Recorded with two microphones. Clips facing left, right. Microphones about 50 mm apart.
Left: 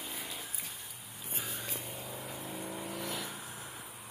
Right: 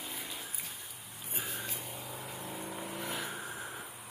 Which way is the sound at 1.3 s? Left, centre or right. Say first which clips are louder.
Right 1 dB; centre.